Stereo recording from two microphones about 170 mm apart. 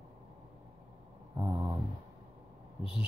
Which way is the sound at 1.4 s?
15° right (ahead or behind).